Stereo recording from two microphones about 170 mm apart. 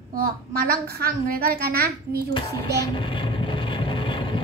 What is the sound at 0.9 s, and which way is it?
A child's voice, 65° right (ahead or behind).